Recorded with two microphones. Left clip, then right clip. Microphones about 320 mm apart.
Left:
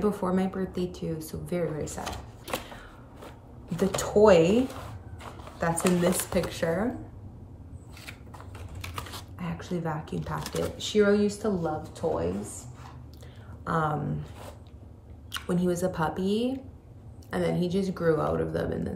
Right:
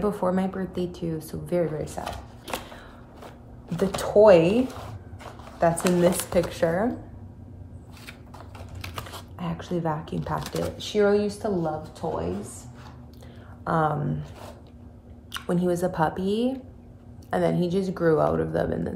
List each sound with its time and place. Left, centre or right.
0.0 s speech: centre
2.0 s a sound: centre
3.6 s speech: centre
5.6 s speech: centre
8.8 s speech: centre
13.7 s speech: centre
15.3 s speech: centre